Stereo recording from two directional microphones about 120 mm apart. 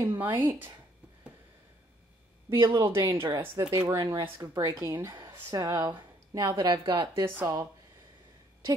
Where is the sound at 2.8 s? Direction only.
20° right (ahead or behind); by 7.2 s 40° right (ahead or behind).